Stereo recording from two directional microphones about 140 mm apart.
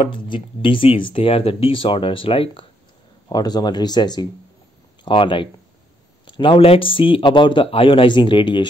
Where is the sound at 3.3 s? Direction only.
30° left (ahead or behind).